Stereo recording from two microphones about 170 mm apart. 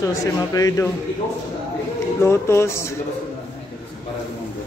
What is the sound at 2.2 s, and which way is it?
Speech, 15° left (ahead or behind).